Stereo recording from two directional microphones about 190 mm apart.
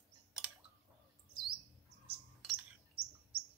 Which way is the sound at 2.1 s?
30° right (ahead or behind).